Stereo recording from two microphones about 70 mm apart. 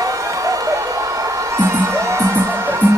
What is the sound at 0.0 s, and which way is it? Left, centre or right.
Music, right.